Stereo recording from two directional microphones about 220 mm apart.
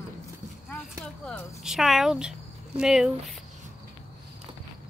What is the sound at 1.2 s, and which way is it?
Speech, 5° left (ahead or behind).